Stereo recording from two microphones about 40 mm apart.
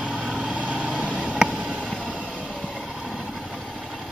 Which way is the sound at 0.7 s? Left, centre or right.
Centre.